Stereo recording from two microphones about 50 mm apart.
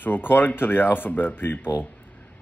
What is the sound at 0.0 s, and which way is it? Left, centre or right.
Speech, left.